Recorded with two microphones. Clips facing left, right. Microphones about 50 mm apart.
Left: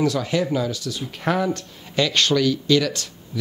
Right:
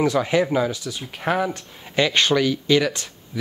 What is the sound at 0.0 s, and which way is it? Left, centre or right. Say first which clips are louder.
Speech: right 2 dB; right.